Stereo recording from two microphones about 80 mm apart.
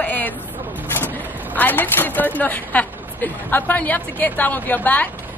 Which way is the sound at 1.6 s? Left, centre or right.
Left.